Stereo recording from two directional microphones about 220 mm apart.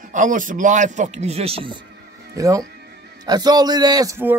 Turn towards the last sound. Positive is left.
turn(degrees=-15)  # may be behind; listen again after turning